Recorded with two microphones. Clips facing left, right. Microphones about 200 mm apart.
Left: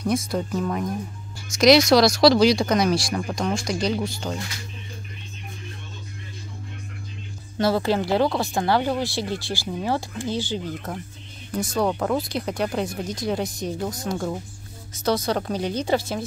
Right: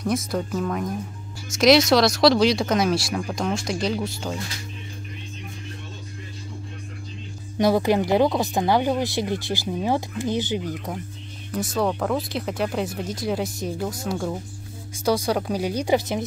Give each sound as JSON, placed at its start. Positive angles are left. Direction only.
{"t": 0.0, "sound": "speech", "side_deg": 0}
{"t": 7.5, "sound": "speech", "side_deg": -15}
{"t": 11.5, "sound": "speech", "side_deg": 0}